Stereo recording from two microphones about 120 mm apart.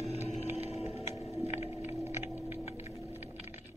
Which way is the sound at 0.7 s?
60° left (ahead or behind).